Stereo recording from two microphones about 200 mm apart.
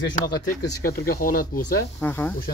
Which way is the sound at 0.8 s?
50° left (ahead or behind).